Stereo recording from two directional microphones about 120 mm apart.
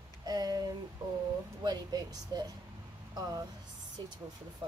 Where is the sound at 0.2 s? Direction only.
35° right (ahead or behind).